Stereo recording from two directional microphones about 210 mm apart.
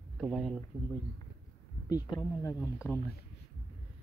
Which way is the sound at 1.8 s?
20° left (ahead or behind).